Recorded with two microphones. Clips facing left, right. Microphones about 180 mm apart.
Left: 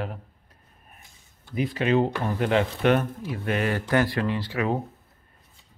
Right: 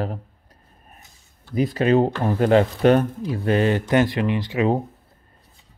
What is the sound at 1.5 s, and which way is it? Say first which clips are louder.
Speech: right 5 dB; 40° right (ahead or behind).